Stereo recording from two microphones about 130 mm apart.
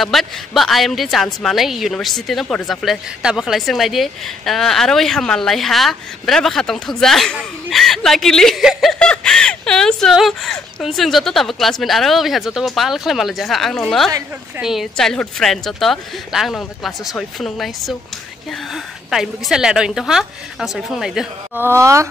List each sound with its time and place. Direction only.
0.0 s a woman's voice: centre (ahead or behind)
21.5 s speech: 20° right (ahead or behind)